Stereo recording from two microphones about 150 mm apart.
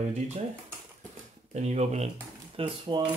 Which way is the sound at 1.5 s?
45° right (ahead or behind).